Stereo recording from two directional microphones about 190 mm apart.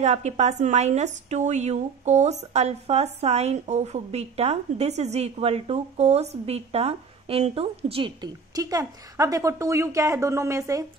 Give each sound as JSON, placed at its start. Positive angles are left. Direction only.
{"t": 0.0, "sound": "a woman's voice", "side_deg": -35}